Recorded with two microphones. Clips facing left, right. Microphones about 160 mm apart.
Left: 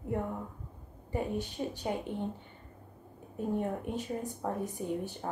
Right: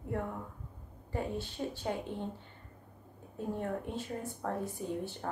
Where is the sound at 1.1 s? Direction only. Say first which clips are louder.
Left 3 dB; 15° left (ahead or behind).